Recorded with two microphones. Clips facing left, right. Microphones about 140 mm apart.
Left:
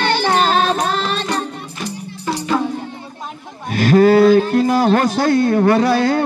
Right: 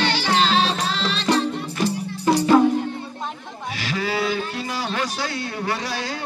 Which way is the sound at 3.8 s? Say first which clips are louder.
Left 15 dB; 50° left (ahead or behind).